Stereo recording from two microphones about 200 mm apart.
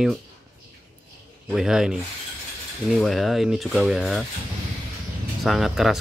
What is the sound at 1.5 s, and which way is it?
Speech, 5° right (ahead or behind).